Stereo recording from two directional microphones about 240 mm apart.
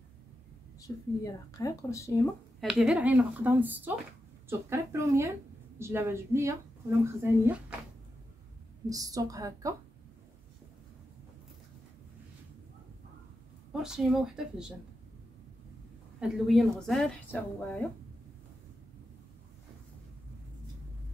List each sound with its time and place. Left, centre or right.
0.7 s speech: centre
2.6 s a woman's voice: centre
8.8 s a woman's voice: centre
13.8 s a woman's voice: centre
16.2 s a woman's voice: centre